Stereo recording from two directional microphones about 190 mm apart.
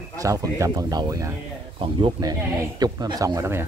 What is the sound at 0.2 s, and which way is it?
Speech, 15° right (ahead or behind).